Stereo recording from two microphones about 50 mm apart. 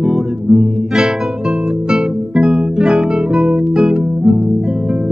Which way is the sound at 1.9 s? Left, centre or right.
Centre.